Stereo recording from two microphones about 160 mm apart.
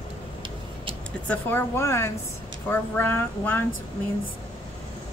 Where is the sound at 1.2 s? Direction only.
15° left (ahead or behind).